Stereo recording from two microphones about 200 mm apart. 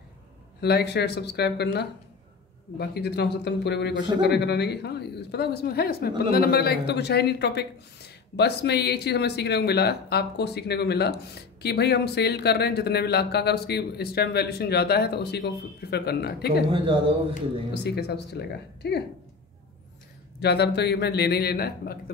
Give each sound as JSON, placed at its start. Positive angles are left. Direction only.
{"t": 0.6, "sound": "speech", "side_deg": 55}
{"t": 16.7, "sound": "speech", "side_deg": -25}
{"t": 17.8, "sound": "speech", "side_deg": 55}
{"t": 20.3, "sound": "speech", "side_deg": 55}